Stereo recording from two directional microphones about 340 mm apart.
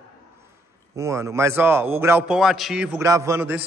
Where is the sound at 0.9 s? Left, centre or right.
Centre.